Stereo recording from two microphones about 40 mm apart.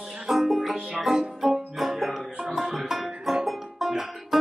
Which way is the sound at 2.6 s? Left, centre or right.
Centre.